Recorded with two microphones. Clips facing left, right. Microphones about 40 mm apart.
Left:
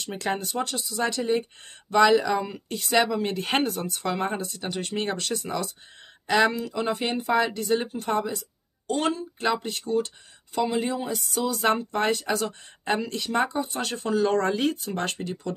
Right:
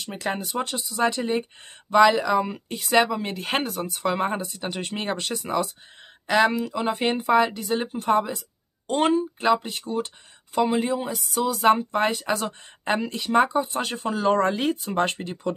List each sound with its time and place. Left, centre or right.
0.0 s speech: centre
8.8 s speech: right
9.4 s speech: centre
10.8 s a sound: centre
11.7 s speech: centre